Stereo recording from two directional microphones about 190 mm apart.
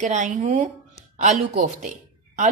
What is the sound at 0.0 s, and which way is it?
Speech, 40° right (ahead or behind).